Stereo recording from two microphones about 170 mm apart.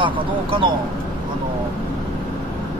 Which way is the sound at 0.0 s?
30° right (ahead or behind).